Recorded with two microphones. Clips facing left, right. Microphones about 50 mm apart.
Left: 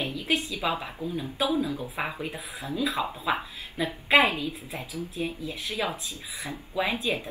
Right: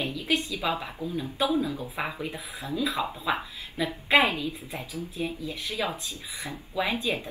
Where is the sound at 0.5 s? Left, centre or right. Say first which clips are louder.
Even; centre.